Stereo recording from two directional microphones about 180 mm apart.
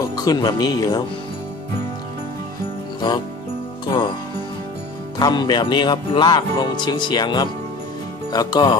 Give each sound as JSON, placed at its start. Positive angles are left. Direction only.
{"t": 0.1, "sound": "speech", "side_deg": 20}
{"t": 5.2, "sound": "speech", "side_deg": 25}